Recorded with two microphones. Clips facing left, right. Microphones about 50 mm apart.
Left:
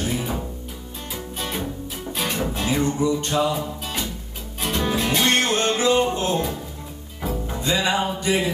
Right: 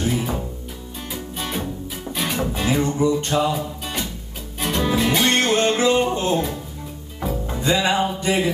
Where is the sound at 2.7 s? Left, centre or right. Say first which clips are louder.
Right 2 dB; centre.